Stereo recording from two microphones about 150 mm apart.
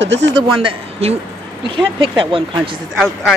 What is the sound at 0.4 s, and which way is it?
Speech, 35° right (ahead or behind).